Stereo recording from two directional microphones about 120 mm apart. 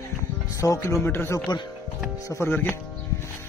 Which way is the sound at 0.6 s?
25° left (ahead or behind).